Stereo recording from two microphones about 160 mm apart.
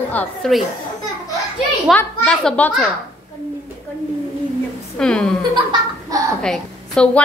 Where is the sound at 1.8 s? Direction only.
5° left (ahead or behind).